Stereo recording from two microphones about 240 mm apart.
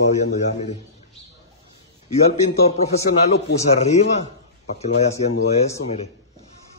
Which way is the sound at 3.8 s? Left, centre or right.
Left.